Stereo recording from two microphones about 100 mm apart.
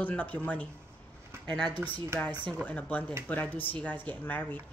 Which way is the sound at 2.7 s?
15° left (ahead or behind).